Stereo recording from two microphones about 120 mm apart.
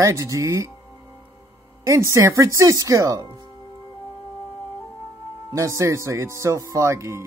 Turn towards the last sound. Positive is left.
turn(degrees=-25)  # may be behind; listen again after turning